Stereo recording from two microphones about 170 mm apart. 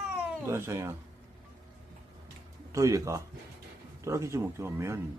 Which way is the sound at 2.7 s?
20° right (ahead or behind).